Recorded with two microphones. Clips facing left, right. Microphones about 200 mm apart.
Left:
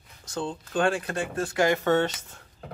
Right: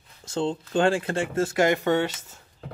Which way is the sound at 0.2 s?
25° right (ahead or behind).